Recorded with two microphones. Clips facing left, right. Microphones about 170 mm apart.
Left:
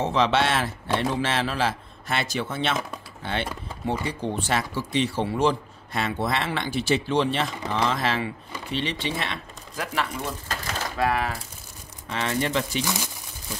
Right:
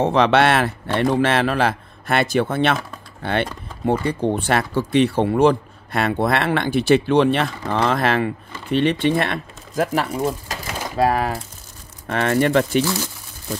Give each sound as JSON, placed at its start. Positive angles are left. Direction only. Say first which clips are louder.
{"t": 0.0, "sound": "speech", "louder": "right 6 dB", "side_deg": -60}
{"t": 10.5, "sound": "a sound", "louder": "right 2 dB", "side_deg": -10}
{"t": 11.0, "sound": "speech", "louder": "right 7 dB", "side_deg": -40}
{"t": 12.1, "sound": "speech", "louder": "right 8 dB", "side_deg": -55}